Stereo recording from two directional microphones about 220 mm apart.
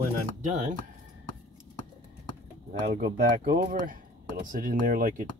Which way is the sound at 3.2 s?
40° right (ahead or behind).